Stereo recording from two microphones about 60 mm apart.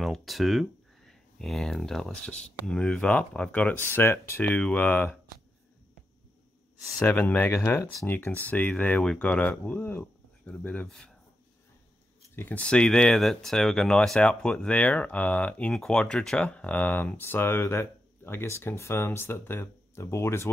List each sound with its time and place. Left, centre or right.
0.0 s speech: centre; by 4.5 s left
4.5 s speech: left
7.0 s speech: left
10.9 s speech: centre
12.5 s speech: centre
15.7 s speech: centre; by 20.4 s left